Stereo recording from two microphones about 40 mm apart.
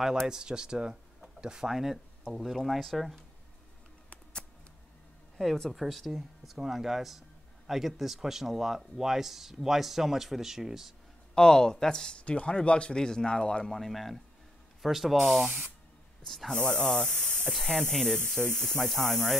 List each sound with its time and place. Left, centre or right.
0.3 s speech: centre
1.7 s speech: centre
5.7 s speech: centre
11.3 s speech: centre
13.7 s speech: centre
15.4 s speech: right
16.3 s speech: centre